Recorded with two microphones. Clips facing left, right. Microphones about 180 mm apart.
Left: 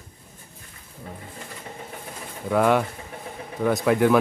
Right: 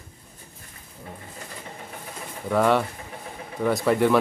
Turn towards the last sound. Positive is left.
turn(degrees=0)  # may be behind; listen again after turning